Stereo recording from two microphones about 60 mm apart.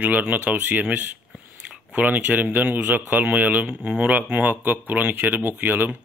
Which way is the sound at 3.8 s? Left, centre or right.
Centre.